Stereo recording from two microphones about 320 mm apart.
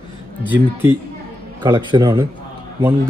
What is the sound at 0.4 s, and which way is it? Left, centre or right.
A man's voice, centre.